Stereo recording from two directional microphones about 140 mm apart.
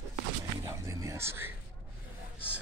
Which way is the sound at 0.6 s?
20° right (ahead or behind).